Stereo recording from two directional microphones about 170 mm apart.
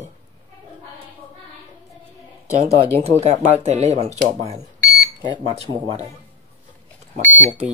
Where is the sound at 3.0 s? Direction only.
40° right (ahead or behind).